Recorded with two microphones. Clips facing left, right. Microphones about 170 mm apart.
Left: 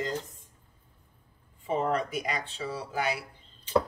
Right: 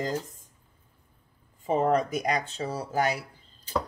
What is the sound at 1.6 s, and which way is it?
Speech, 40° right (ahead or behind).